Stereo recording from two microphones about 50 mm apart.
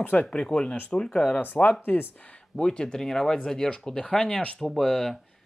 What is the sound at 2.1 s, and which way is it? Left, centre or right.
Speech, left.